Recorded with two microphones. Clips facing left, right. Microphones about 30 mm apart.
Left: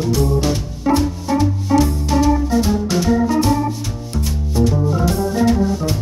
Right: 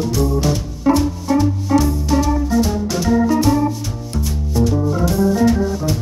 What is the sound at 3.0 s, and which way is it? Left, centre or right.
Organ, centre.